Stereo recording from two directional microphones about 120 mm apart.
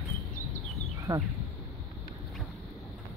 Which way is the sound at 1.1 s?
30° right (ahead or behind).